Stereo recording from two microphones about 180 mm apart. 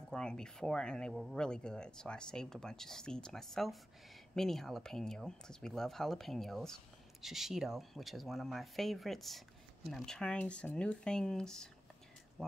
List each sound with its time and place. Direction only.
0.1 s speech: 5° left (ahead or behind)